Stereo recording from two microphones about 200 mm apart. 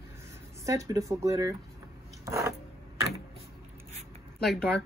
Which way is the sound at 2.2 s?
15° right (ahead or behind).